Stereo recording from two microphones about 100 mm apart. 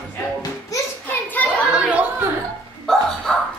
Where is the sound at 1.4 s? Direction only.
15° left (ahead or behind).